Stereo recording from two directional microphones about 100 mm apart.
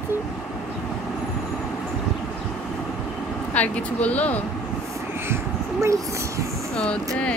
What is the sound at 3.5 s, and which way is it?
Speech, 15° left (ahead or behind).